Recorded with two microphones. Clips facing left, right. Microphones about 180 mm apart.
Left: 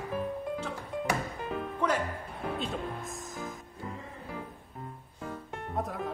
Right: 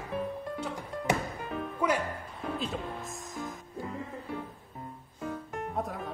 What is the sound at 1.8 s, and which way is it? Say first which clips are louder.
Music: right 1 dB; 10° right (ahead or behind).